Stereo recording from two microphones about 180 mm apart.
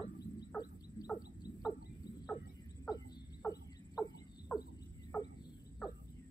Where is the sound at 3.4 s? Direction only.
20° left (ahead or behind).